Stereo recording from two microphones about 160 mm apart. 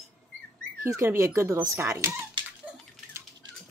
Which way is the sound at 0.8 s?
15° right (ahead or behind).